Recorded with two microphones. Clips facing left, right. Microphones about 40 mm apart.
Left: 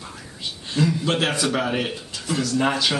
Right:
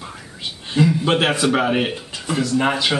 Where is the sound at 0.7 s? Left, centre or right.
Right.